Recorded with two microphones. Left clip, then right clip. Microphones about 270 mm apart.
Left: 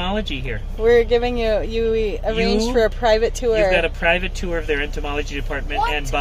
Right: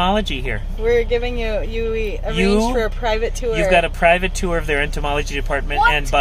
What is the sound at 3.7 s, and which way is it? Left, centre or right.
Speech, right.